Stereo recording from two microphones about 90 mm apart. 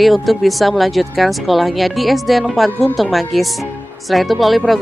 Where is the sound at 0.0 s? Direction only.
Centre (ahead or behind).